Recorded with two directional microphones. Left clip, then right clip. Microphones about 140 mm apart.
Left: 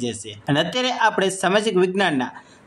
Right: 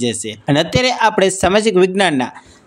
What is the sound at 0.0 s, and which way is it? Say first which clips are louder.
Speech: right 8 dB; 35° right (ahead or behind).